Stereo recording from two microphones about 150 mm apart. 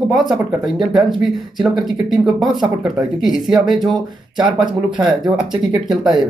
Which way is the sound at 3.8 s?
30° right (ahead or behind).